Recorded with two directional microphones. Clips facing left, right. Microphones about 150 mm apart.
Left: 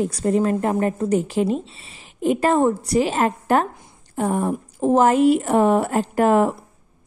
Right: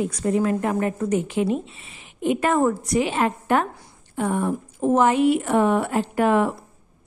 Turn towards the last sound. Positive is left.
turn(degrees=40)  # may be behind; listen again after turning